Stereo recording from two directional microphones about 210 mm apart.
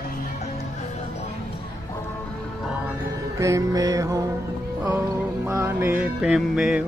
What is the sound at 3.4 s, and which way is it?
Music, 15° right (ahead or behind).